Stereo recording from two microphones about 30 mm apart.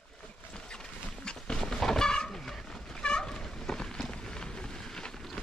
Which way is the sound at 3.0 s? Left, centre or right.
Left.